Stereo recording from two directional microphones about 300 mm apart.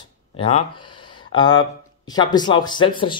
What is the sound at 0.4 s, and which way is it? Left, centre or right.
Speech, centre.